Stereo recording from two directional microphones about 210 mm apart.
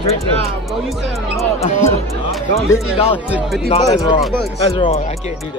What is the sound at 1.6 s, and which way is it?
Speech, 30° left (ahead or behind).